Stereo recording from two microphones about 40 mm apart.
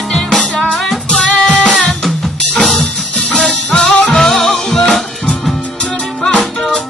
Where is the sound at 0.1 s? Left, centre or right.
Centre.